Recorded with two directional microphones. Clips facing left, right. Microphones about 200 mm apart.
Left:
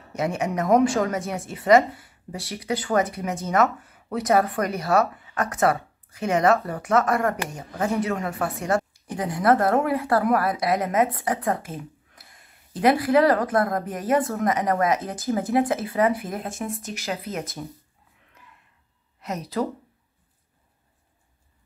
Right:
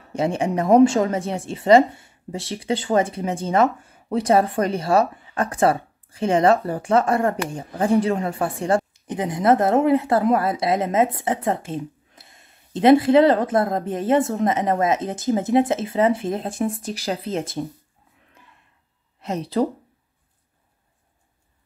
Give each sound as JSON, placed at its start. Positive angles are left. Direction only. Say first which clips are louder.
{"t": 0.1, "sound": "speech", "louder": "right 4 dB", "side_deg": -30}
{"t": 19.1, "sound": "a woman's voice", "louder": "right 5 dB", "side_deg": -30}